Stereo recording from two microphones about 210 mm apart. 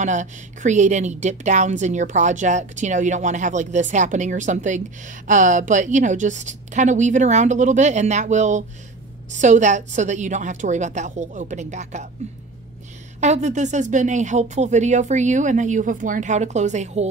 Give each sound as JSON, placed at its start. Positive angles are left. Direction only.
{"t": 0.0, "sound": "a woman's voice", "side_deg": -35}
{"t": 13.2, "sound": "a woman's voice", "side_deg": -35}